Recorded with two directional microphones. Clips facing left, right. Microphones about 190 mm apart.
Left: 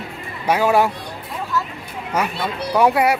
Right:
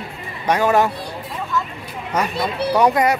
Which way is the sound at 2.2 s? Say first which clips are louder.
Right 2 dB; 10° left (ahead or behind).